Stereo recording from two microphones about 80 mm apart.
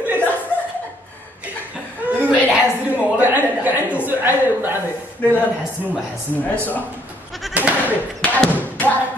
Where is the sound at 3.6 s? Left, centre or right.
Centre.